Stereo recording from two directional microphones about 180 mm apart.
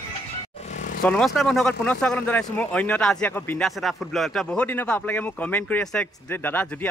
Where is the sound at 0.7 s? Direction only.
45° left (ahead or behind).